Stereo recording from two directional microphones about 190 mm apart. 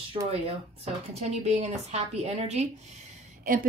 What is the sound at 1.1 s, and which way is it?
Speech, 35° right (ahead or behind).